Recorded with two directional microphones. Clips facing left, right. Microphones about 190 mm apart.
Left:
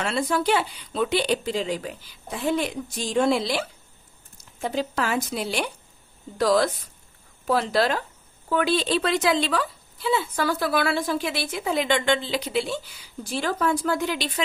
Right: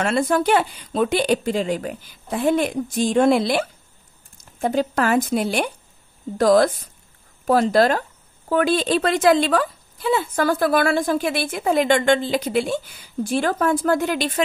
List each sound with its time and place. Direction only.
0.0 s a woman's voice: 50° right (ahead or behind)